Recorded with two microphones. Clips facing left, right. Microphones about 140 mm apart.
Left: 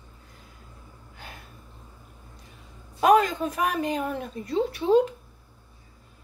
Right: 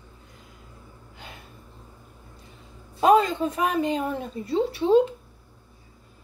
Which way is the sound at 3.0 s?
30° right (ahead or behind).